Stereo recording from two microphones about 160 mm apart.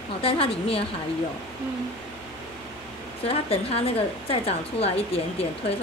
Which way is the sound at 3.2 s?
35° left (ahead or behind).